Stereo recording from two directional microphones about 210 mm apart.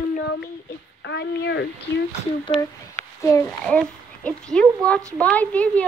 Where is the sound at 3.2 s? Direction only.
15° left (ahead or behind).